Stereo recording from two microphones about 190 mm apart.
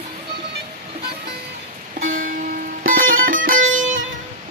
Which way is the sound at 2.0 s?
45° right (ahead or behind).